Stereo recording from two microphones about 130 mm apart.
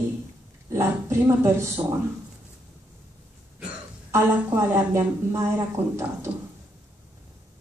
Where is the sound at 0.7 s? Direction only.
20° right (ahead or behind).